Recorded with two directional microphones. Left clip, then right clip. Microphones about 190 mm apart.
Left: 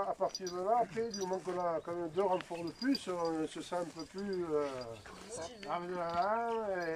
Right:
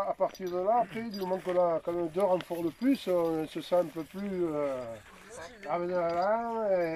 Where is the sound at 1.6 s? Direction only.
25° right (ahead or behind).